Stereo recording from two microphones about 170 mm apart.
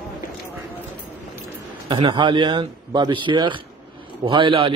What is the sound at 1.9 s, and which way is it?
A man's voice, 25° right (ahead or behind).